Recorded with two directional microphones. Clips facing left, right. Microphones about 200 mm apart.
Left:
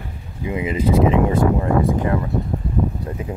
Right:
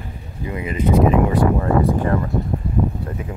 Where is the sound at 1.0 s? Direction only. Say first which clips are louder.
Right 1 dB; 20° left (ahead or behind).